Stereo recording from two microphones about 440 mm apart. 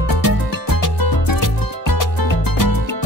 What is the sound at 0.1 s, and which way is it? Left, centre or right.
Music, left.